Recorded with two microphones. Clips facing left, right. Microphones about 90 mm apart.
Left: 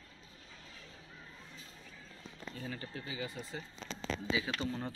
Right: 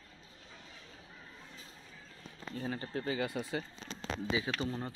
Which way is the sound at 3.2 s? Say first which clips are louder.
Right 6 dB; 65° right (ahead or behind).